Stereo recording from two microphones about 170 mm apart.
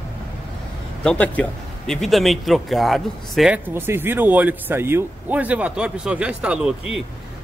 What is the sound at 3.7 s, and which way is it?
A man's voice, 15° right (ahead or behind).